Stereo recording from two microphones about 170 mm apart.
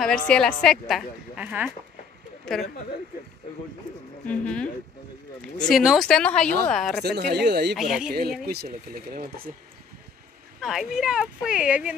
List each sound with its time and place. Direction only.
0.0 s a woman's voice: 5° left (ahead or behind)
2.5 s a woman's voice: 5° left (ahead or behind)
4.3 s speech: 5° left (ahead or behind)
5.7 s a woman's voice: centre (ahead or behind)
7.0 s speech: 75° right (ahead or behind)
7.7 s a woman's voice: centre (ahead or behind)
8.5 s speech: 65° right (ahead or behind)
10.6 s a woman's voice: centre (ahead or behind)